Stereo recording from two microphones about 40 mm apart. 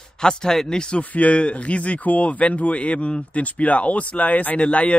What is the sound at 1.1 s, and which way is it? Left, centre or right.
Speech, left.